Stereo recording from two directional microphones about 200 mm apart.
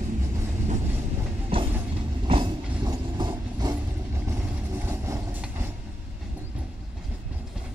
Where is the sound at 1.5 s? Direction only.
25° right (ahead or behind); by 5.7 s 10° right (ahead or behind).